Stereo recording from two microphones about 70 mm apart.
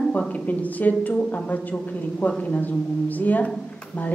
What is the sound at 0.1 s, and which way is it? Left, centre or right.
Speech, left.